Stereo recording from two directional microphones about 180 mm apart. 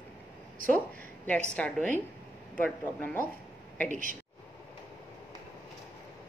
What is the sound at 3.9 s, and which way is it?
Speech, 45° right (ahead or behind).